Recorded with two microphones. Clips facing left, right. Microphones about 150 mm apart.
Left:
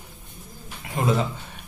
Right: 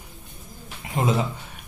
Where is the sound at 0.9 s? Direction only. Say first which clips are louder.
Even; 20° right (ahead or behind).